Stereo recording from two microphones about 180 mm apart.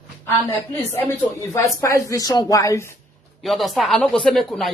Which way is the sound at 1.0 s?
15° left (ahead or behind).